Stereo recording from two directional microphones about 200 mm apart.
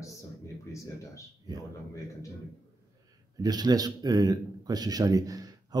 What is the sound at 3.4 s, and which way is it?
Speech, 20° right (ahead or behind).